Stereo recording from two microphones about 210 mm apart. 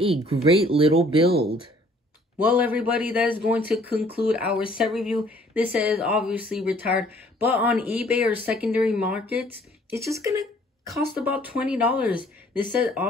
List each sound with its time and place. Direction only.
0.0 s speech: 25° right (ahead or behind)
2.3 s speech: 10° right (ahead or behind)